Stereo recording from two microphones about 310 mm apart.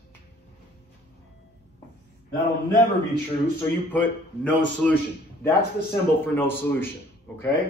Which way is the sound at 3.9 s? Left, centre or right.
Centre.